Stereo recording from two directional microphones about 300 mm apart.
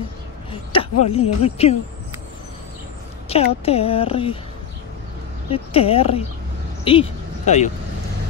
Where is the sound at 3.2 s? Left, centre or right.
Centre.